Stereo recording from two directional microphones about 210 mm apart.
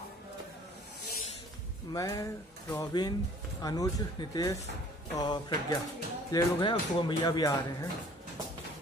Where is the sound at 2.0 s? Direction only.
15° left (ahead or behind).